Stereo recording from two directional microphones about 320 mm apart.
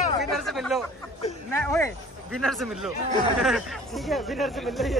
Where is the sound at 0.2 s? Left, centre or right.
Centre.